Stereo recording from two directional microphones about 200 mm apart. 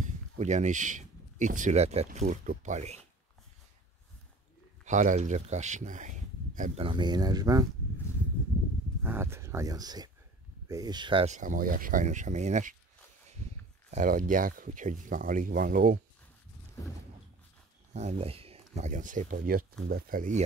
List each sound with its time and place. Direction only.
0.0 s speech: 35° right (ahead or behind)
4.8 s speech: 40° right (ahead or behind)
6.8 s speech: 25° right (ahead or behind)
9.0 s speech: 10° right (ahead or behind); by 12.7 s 35° right (ahead or behind)
13.8 s speech: 40° right (ahead or behind)
17.9 s speech: 30° right (ahead or behind)